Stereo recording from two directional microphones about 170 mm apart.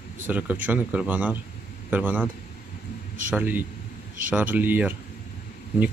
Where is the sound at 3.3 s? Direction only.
10° right (ahead or behind).